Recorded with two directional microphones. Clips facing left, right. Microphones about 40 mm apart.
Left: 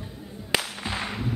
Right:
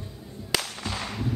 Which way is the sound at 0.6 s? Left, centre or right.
Centre.